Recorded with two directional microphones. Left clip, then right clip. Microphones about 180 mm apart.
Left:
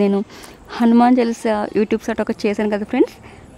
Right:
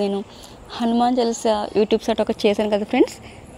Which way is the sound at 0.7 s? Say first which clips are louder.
Left 5 dB; 20° left (ahead or behind).